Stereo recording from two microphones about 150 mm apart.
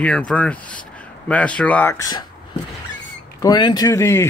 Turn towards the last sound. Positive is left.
turn(degrees=20)  # may be behind; listen again after turning